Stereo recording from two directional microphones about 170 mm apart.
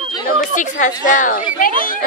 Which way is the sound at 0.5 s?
50° left (ahead or behind).